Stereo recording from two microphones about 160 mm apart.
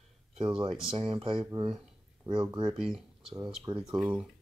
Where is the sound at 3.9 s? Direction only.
5° right (ahead or behind).